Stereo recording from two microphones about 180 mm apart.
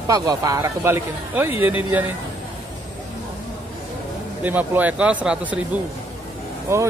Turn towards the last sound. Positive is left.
turn(degrees=-15)  # may be behind; listen again after turning